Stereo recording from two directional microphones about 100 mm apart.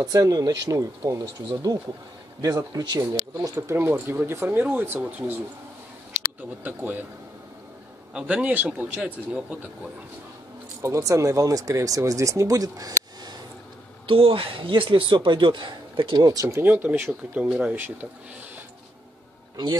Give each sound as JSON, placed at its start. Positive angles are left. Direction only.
{"t": 0.0, "sound": "speech", "side_deg": -40}
{"t": 1.2, "sound": "speech", "side_deg": -55}
{"t": 2.4, "sound": "speech", "side_deg": -40}
{"t": 6.6, "sound": "speech", "side_deg": -15}
{"t": 8.1, "sound": "speech", "side_deg": -10}
{"t": 10.8, "sound": "speech", "side_deg": -30}
{"t": 14.0, "sound": "speech", "side_deg": -65}
{"t": 16.3, "sound": "speech", "side_deg": -30}
{"t": 16.6, "sound": "speech", "side_deg": -20}
{"t": 19.5, "sound": "speech", "side_deg": -45}